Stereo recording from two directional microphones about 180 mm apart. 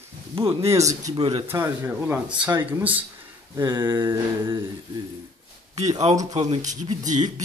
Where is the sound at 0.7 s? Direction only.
15° right (ahead or behind).